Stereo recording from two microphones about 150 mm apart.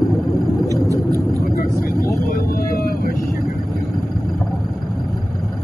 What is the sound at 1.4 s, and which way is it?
Vehicle, 75° left (ahead or behind).